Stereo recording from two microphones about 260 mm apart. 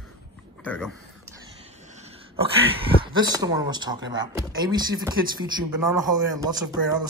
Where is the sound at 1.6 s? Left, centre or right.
Right.